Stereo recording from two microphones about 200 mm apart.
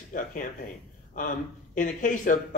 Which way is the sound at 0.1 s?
40° left (ahead or behind).